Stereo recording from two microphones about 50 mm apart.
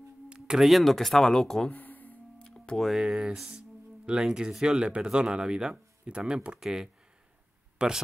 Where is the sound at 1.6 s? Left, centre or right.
Left.